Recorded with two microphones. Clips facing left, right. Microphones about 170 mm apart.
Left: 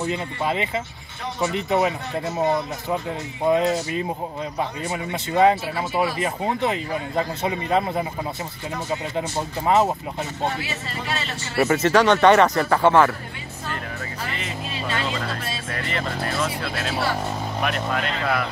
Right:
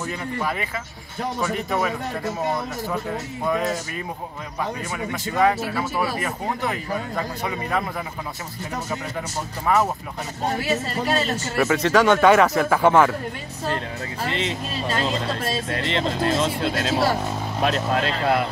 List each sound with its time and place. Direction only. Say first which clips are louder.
0.0 s a man's voice: left 2 dB; 20° left (ahead or behind)
3.4 s a man's voice: left 5 dB; 25° left (ahead or behind)
9.7 s a man's voice: left 2 dB; 25° left (ahead or behind)
10.4 s a man's voice: right 6 dB; 40° right (ahead or behind)
11.5 s speech: left 1 dB; 5° left (ahead or behind); by 13.1 s 15° right (ahead or behind)
14.9 s speech: right 3 dB; 40° right (ahead or behind)
15.7 s speech: right 1 dB; 25° right (ahead or behind)
16.9 s speech: right 3 dB; 40° right (ahead or behind)
17.6 s speech: right 4 dB; 30° right (ahead or behind)